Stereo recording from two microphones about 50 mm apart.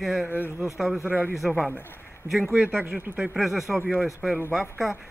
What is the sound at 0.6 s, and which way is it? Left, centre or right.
Speech, centre.